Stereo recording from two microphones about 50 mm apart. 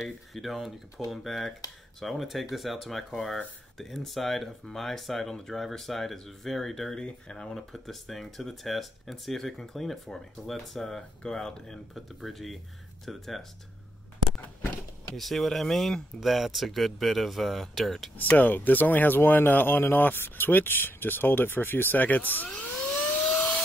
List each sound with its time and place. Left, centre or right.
0.0 s speech: centre
15.1 s speech: centre
18.1 s speech: left
23.2 s a sound: left